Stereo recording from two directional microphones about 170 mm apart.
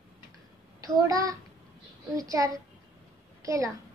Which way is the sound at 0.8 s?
20° right (ahead or behind).